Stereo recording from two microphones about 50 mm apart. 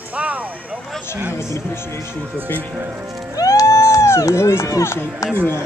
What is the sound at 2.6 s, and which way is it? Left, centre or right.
Speech, right.